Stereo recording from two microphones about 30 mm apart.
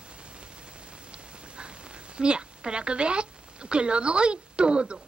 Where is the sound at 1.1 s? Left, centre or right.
Right.